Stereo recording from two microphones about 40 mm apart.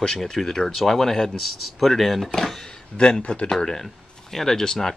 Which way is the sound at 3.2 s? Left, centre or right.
Left.